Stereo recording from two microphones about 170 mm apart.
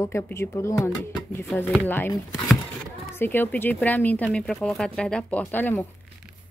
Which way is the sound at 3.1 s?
10° left (ahead or behind).